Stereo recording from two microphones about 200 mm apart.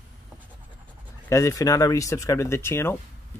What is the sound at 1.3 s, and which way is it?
Speech, 15° left (ahead or behind).